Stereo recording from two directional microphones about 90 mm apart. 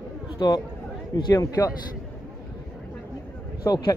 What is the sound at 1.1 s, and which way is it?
Speech, 45° left (ahead or behind).